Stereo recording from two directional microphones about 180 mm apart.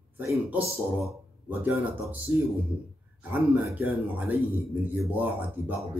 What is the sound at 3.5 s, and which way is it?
Speech, 10° right (ahead or behind).